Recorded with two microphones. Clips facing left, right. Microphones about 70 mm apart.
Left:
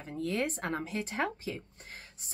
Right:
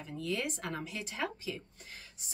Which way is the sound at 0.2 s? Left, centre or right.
Left.